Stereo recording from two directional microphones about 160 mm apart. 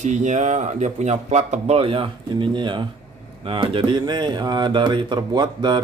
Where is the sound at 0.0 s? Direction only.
50° right (ahead or behind).